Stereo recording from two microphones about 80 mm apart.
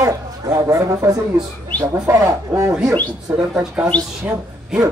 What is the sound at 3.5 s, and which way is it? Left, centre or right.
Speech, centre.